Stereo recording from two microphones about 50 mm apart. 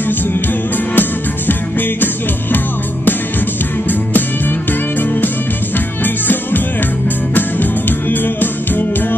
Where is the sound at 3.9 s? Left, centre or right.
Left.